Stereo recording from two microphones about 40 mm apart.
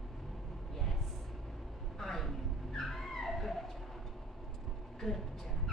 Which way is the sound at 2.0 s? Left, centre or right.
Centre.